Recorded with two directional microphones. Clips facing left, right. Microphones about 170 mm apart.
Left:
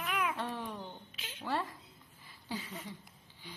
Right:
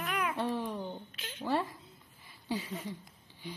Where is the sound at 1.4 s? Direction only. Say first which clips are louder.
Right 4 dB; 10° right (ahead or behind).